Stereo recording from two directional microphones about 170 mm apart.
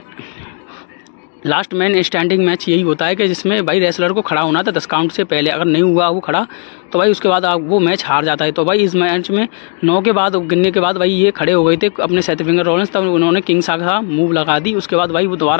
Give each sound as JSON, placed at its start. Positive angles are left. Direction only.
{"t": 1.5, "sound": "a man's voice", "side_deg": 10}